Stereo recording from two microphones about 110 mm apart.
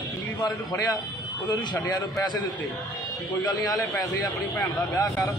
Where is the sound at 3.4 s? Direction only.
40° left (ahead or behind).